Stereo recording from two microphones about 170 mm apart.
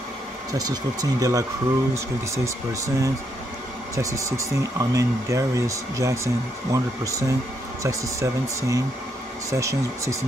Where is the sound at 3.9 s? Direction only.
20° right (ahead or behind).